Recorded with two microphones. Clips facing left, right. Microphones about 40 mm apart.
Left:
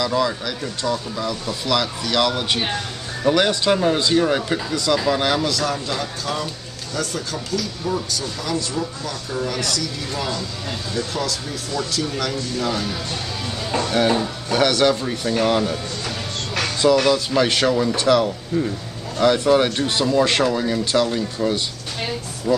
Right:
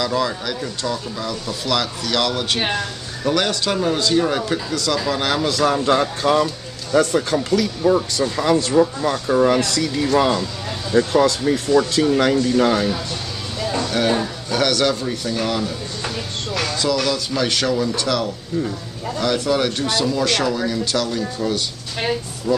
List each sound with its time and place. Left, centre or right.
0.0 s speech: centre
5.4 s a man's voice: centre
5.9 s speech: right
13.7 s music: centre
14.5 s speech: centre
16.5 s music: centre
16.9 s speech: left